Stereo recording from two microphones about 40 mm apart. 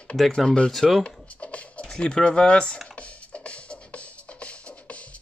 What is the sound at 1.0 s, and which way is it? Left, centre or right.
Music, left.